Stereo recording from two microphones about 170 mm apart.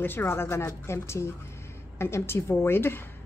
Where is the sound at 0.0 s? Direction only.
15° left (ahead or behind).